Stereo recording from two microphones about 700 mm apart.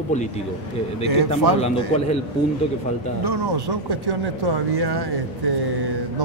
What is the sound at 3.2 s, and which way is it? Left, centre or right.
Speech, right.